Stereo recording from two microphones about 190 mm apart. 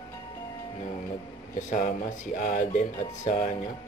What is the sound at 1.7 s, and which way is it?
Speech, 40° left (ahead or behind).